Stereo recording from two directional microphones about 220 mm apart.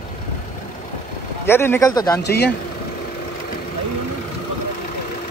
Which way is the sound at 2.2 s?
45° left (ahead or behind).